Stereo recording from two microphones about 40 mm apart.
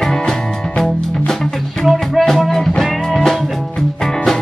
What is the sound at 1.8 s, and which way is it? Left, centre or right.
Music, centre.